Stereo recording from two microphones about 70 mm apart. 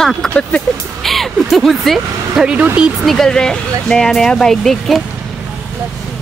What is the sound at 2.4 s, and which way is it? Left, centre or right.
Speech, centre.